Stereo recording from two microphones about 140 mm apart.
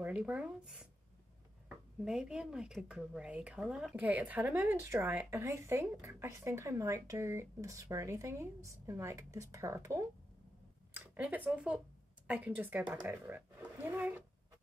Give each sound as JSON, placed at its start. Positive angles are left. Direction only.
{"t": 0.0, "sound": "speech", "side_deg": -10}